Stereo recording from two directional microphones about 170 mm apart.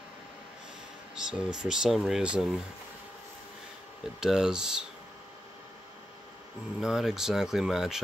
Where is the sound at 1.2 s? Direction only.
5° right (ahead or behind).